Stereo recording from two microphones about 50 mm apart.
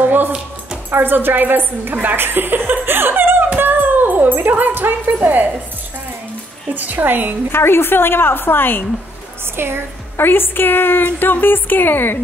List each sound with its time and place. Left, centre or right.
0.0 s dog: right
0.9 s a woman's voice: right
3.5 s a sound: right
6.7 s a woman's voice: right
7.5 s a woman's voice: left
9.6 s a woman's voice: right
10.1 s a woman's voice: left